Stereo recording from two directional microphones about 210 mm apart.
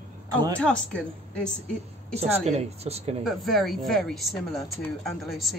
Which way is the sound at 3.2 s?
Centre (ahead or behind).